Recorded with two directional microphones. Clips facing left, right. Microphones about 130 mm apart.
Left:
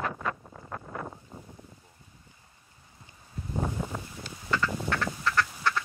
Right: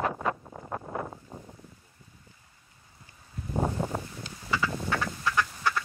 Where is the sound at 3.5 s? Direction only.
45° right (ahead or behind).